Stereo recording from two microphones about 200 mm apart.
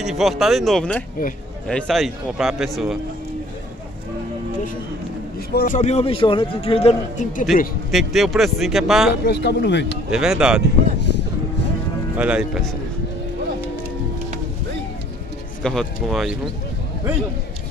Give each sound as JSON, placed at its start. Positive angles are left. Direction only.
{"t": 0.0, "sound": "a man's voice", "side_deg": 0}
{"t": 5.5, "sound": "a man's voice", "side_deg": 50}
{"t": 5.8, "sound": "a man's voice", "side_deg": 30}
{"t": 7.9, "sound": "a man's voice", "side_deg": 0}
{"t": 9.1, "sound": "speech", "side_deg": 55}
{"t": 10.1, "sound": "a man's voice", "side_deg": -5}
{"t": 12.2, "sound": "a man's voice", "side_deg": -5}
{"t": 15.6, "sound": "a man's voice", "side_deg": 5}